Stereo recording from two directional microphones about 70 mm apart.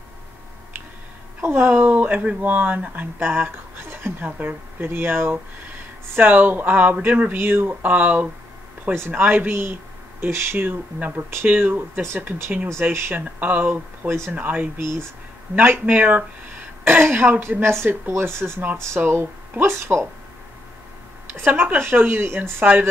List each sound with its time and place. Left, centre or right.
1.4 s speech: right
14.8 s speech: right
15.5 s speech: right
21.3 s speech: right